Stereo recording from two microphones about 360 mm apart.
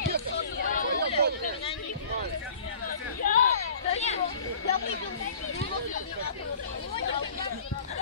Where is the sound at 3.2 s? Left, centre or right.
Left.